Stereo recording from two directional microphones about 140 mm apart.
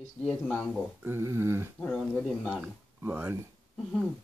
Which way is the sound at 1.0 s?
20° right (ahead or behind).